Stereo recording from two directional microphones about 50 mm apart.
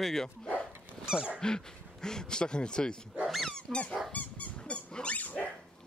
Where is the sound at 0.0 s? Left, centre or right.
Centre.